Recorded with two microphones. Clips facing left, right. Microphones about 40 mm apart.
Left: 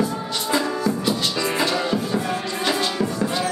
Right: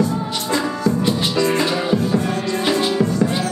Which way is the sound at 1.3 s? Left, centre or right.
Centre.